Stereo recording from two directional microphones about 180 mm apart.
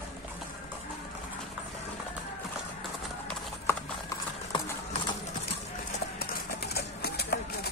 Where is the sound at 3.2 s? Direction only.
10° left (ahead or behind).